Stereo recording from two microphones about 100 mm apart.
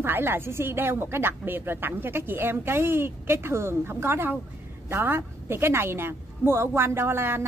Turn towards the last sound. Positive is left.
turn(degrees=-25)  # may be behind; listen again after turning